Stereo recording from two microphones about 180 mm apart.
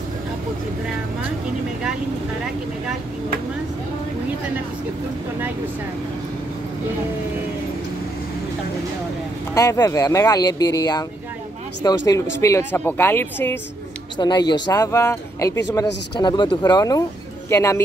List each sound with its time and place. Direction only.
9.5 s speech: 20° left (ahead or behind)
12.1 s a woman's voice: 15° left (ahead or behind)
14.1 s speech: 25° left (ahead or behind)